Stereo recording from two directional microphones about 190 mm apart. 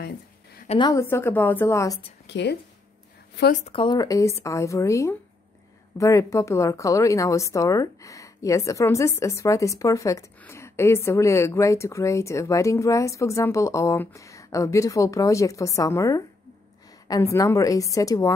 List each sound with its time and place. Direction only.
0.8 s a woman's voice: 15° left (ahead or behind)
2.2 s speech: 65° left (ahead or behind)
3.5 s a woman's voice: 30° left (ahead or behind)